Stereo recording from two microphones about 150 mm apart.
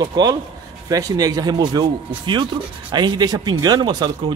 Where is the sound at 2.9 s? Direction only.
30° right (ahead or behind).